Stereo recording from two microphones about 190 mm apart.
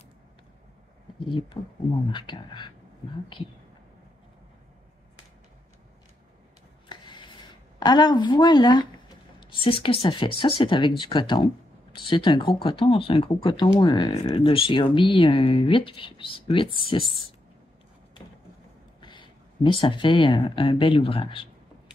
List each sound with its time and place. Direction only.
2.0 s speech: 25° left (ahead or behind)
6.9 s a sound: 25° left (ahead or behind)
9.4 s speech: 25° left (ahead or behind)
18.9 s speech: 25° left (ahead or behind)